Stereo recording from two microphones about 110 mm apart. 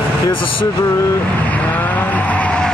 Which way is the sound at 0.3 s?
50° left (ahead or behind).